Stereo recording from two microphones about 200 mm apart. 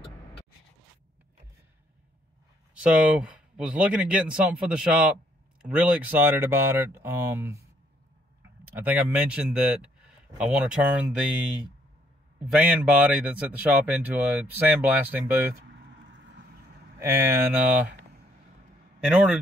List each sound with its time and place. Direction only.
2.8 s a man's voice: 5° right (ahead or behind)
8.6 s a man's voice: 10° right (ahead or behind)
12.4 s a man's voice: 5° right (ahead or behind)
16.1 s horse: 60° right (ahead or behind)
17.0 s a man's voice: 10° right (ahead or behind)
19.0 s speech: 5° right (ahead or behind)